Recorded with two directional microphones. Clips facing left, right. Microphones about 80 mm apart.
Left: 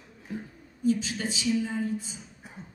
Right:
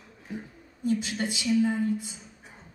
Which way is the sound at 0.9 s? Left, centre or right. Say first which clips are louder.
Left 1 dB; right.